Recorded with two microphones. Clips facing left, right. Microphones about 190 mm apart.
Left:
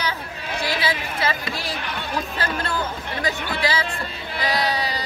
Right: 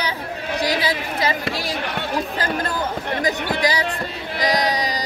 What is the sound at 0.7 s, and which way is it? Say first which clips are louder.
A woman's voice: right 3 dB; 40° right (ahead or behind).